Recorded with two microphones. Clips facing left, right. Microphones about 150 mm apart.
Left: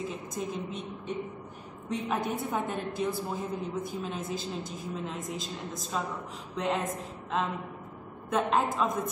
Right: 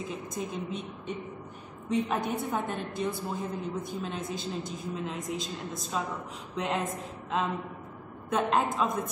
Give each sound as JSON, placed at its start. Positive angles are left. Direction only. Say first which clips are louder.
{"t": 0.1, "sound": "a woman's voice", "louder": "even", "side_deg": 0}